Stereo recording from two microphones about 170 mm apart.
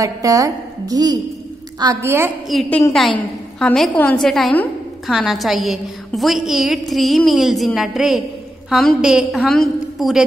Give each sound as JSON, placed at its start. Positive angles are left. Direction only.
{"t": 0.0, "sound": "a woman's voice", "side_deg": -20}
{"t": 2.4, "sound": "a woman's voice", "side_deg": 0}